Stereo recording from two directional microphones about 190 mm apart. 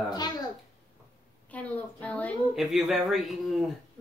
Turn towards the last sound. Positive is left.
turn(degrees=0)  # may be behind; listen again after turning